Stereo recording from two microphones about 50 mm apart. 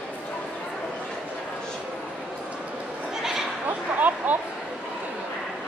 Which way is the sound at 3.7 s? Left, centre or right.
Right.